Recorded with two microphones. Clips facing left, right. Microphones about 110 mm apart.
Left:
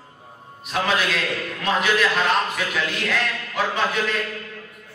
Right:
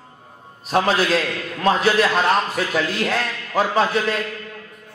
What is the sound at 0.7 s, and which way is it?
Music, 35° right (ahead or behind).